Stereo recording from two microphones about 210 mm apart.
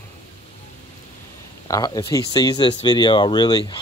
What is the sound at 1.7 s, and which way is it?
Speech, 15° left (ahead or behind).